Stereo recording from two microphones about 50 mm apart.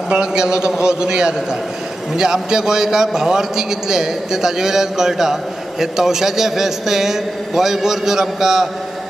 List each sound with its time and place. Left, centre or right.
0.1 s a man's voice: centre